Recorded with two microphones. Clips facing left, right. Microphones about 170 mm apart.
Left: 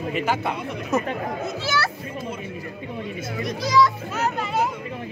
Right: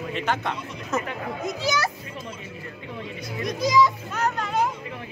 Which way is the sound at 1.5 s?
15° right (ahead or behind).